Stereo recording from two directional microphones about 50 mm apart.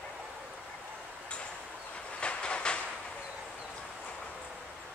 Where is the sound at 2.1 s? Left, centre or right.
Left.